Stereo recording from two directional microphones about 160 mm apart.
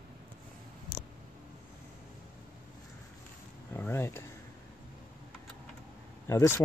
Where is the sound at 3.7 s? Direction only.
15° left (ahead or behind).